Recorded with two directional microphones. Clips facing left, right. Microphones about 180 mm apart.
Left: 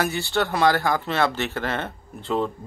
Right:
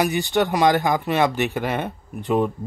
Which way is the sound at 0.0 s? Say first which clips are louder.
Right 4 dB; 15° right (ahead or behind).